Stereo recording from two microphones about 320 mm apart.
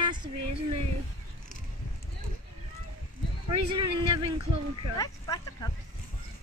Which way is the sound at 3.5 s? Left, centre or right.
Centre.